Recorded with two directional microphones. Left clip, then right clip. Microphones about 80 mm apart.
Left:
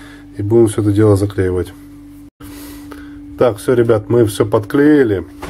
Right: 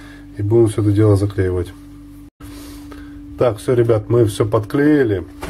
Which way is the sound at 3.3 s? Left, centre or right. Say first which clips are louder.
Left 3 dB; left.